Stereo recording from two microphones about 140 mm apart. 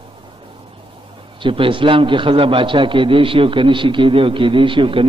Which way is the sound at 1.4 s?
40° right (ahead or behind).